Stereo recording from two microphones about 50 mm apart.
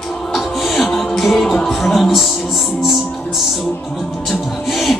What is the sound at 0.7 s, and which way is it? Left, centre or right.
Music, centre.